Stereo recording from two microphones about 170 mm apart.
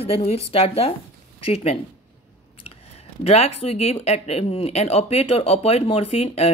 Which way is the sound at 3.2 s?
35° left (ahead or behind).